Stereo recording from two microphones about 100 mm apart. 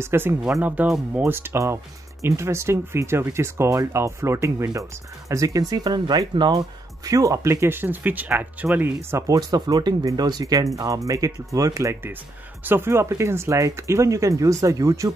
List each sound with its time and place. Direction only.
0.0 s speech: 25° right (ahead or behind)
0.8 s speech: 5° right (ahead or behind)
1.2 s speech: 25° right (ahead or behind)
9.3 s speech: 40° right (ahead or behind)